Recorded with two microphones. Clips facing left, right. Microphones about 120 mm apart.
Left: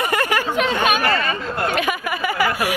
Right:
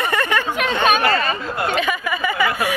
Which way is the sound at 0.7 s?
25° right (ahead or behind).